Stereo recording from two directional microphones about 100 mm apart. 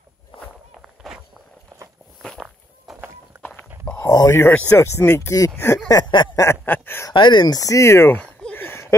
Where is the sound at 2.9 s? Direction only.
20° right (ahead or behind).